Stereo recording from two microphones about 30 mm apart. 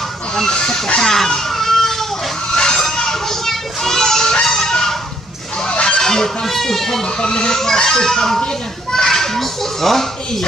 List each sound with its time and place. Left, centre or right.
0.5 s speech: left
1.0 s a sound: centre
2.7 s children playing: centre
4.2 s music: left
4.5 s honk: centre
5.7 s goose: left
5.9 s goose: centre
6.4 s speech: centre
7.2 s a child's voice: left; by 10.0 s centre